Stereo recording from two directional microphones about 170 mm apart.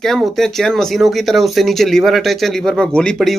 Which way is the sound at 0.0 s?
Centre (ahead or behind).